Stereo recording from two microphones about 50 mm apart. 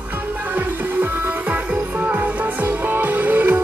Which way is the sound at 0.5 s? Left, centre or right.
Right.